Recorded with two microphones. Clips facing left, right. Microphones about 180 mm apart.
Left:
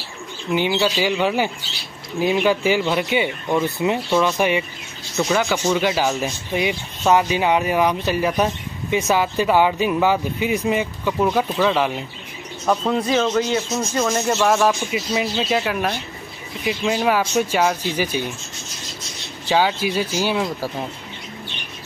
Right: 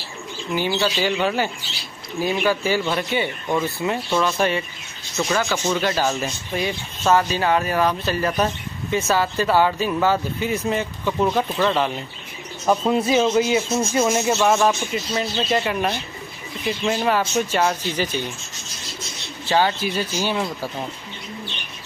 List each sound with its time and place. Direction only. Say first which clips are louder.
0.5 s speech: left 3 dB; 15° left (ahead or behind)
12.6 s speech: right 1 dB; 5° right (ahead or behind); by 18.3 s 10° left (ahead or behind)
19.4 s speech: left 1 dB; 10° left (ahead or behind)